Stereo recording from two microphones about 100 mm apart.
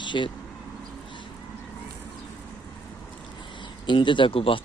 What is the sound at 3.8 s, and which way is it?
Speech, 55° left (ahead or behind).